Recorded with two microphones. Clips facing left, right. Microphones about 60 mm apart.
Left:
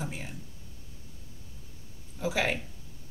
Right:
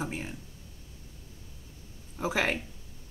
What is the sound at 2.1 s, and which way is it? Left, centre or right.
Speech, right.